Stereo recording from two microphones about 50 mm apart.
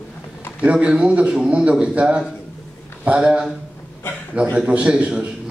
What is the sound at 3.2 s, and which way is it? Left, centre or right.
Speech, centre.